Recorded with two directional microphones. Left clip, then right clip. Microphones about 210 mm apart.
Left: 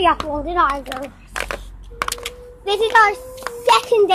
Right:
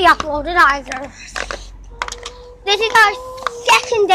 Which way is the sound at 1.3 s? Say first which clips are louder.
Right 1 dB; 20° right (ahead or behind).